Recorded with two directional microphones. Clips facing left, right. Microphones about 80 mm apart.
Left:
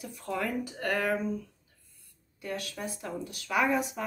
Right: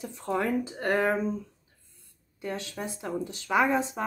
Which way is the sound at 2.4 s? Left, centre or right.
Right.